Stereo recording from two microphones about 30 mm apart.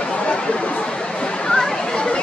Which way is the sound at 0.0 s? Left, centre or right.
Left.